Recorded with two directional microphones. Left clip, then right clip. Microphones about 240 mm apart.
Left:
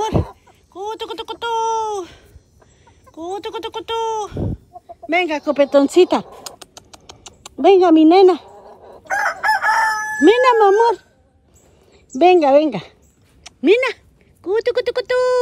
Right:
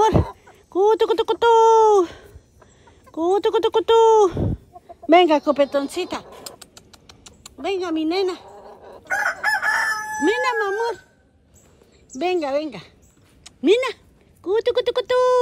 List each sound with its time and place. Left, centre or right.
0.0 s a sound: centre
3.2 s speech: centre
5.9 s speech: left
7.9 s a woman's voice: left
8.4 s a sound: centre
9.0 s chicken: left
10.2 s speech: centre
12.2 s speech: centre
13.4 s a sound: centre
14.4 s speech: centre